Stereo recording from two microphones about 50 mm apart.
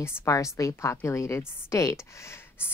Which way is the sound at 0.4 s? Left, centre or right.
Left.